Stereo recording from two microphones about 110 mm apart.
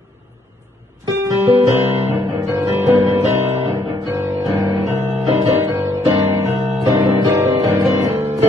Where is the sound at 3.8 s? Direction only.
35° right (ahead or behind).